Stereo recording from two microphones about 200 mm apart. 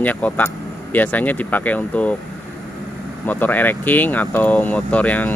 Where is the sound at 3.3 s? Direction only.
10° left (ahead or behind).